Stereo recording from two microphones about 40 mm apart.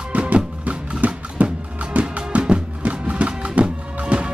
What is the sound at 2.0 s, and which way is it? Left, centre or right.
Music, right.